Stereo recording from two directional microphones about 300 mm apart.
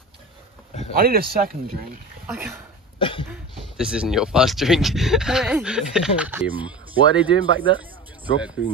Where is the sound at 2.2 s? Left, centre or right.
Centre.